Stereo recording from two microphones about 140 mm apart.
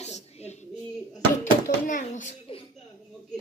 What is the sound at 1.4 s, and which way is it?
Speech, 65° left (ahead or behind).